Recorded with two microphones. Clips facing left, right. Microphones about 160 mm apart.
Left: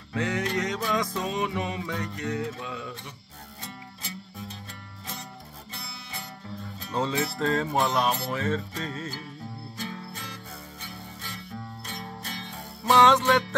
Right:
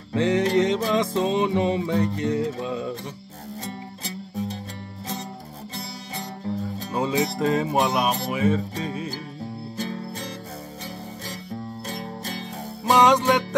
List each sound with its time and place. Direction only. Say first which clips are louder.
0.1 s music: right 8 dB; 30° right (ahead or behind)
5.8 s music: right 7 dB; 35° right (ahead or behind)
6.9 s music: right 3 dB; 10° right (ahead or behind)
9.8 s music: right 7 dB; 35° right (ahead or behind)
11.9 s music: right 5 dB; 35° right (ahead or behind)
12.9 s music: right 2 dB; 15° right (ahead or behind)